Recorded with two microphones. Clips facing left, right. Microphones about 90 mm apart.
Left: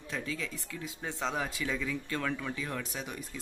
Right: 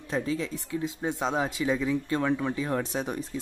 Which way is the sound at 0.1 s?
30° right (ahead or behind).